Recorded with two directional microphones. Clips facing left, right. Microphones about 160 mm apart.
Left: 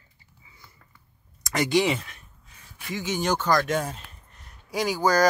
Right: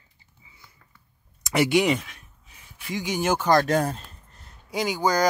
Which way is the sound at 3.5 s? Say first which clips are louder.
Right 6 dB; 35° right (ahead or behind).